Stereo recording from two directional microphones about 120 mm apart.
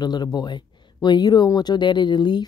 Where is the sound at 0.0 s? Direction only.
35° left (ahead or behind).